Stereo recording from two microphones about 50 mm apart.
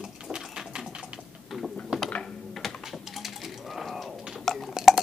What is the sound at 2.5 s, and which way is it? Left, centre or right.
Music, centre.